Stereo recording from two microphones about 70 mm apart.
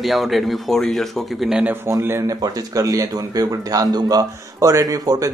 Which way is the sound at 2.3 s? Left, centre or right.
Right.